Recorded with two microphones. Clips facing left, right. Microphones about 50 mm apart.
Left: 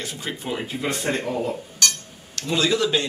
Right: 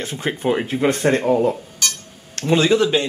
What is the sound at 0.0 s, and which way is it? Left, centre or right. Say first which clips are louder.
Speech: right 8 dB; right.